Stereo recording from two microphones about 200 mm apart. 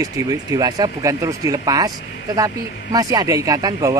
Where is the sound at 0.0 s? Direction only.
20° right (ahead or behind).